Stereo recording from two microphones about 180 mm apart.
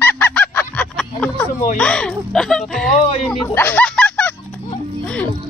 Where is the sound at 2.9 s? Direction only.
35° left (ahead or behind).